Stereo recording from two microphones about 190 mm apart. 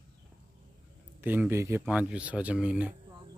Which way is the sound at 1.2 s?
10° right (ahead or behind).